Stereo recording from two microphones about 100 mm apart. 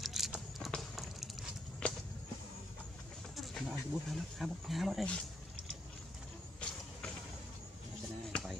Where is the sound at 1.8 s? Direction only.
10° left (ahead or behind).